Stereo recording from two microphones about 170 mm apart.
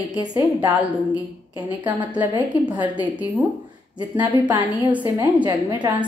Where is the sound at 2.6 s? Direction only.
10° right (ahead or behind).